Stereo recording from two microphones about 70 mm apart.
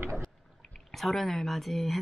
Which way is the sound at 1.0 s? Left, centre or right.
Centre.